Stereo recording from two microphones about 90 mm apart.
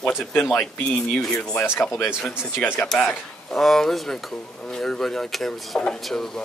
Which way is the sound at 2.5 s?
25° left (ahead or behind).